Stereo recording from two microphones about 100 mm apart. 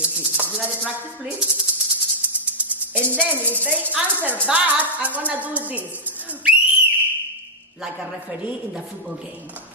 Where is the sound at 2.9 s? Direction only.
20° right (ahead or behind).